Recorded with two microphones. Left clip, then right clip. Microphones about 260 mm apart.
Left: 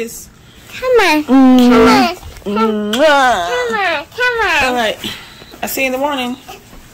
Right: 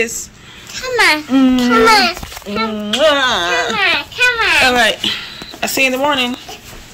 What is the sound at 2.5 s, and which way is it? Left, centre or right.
Speech, left.